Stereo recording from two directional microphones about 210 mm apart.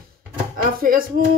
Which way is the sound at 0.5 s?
45° right (ahead or behind).